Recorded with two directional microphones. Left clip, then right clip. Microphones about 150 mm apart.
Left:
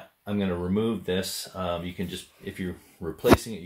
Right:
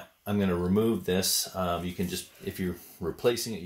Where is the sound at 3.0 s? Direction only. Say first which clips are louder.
Left 6 dB; 25° right (ahead or behind).